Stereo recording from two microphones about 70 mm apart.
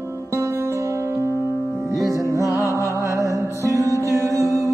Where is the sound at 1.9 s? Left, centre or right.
Right.